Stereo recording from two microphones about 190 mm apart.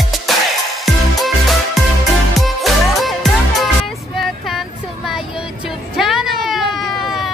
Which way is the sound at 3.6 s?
Centre (ahead or behind).